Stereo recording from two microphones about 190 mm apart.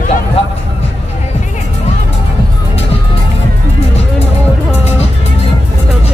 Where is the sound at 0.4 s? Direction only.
30° left (ahead or behind).